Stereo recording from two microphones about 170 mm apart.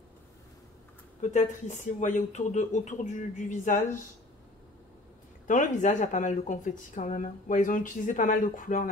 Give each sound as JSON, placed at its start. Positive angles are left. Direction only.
{"t": 1.2, "sound": "speech", "side_deg": 45}
{"t": 5.5, "sound": "speech", "side_deg": 45}